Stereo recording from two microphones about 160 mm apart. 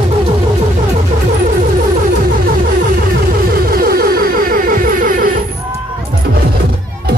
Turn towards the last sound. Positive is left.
turn(degrees=-60)  # may be behind; listen again after turning